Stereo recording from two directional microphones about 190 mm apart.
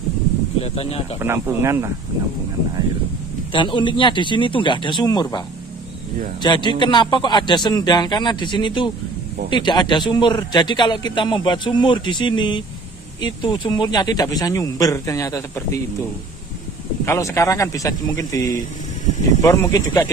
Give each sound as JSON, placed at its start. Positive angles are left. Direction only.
{"t": 0.6, "sound": "speech", "side_deg": 30}
{"t": 1.2, "sound": "speech", "side_deg": -15}
{"t": 3.5, "sound": "a man's voice", "side_deg": 25}
{"t": 6.4, "sound": "a man's voice", "side_deg": 25}
{"t": 17.0, "sound": "speech", "side_deg": 15}